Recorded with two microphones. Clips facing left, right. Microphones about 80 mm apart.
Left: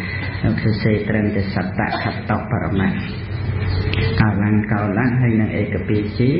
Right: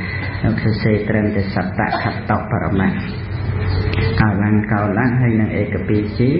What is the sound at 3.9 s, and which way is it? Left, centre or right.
A man's voice, right.